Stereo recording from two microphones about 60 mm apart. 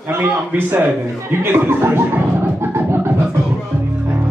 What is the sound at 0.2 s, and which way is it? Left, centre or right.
Speech, right.